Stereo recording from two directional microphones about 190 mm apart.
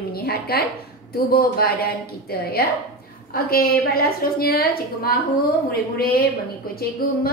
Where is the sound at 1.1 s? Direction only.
50° left (ahead or behind).